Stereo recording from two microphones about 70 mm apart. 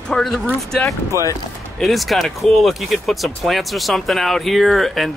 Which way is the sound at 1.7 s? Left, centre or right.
Centre.